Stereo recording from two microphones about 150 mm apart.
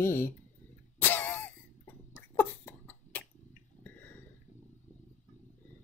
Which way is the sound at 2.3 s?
10° left (ahead or behind).